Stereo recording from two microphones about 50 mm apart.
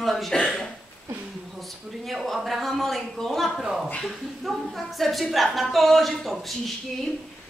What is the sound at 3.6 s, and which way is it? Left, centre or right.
Speech, centre.